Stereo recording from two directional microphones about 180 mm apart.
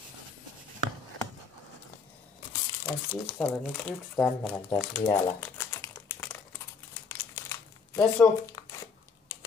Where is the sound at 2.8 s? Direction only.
10° left (ahead or behind).